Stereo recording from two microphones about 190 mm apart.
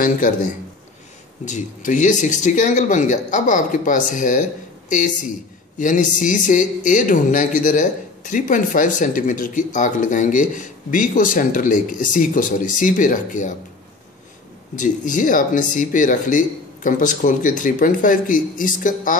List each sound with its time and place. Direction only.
0.0 s a man's voice: 45° left (ahead or behind)
14.8 s a man's voice: 40° left (ahead or behind)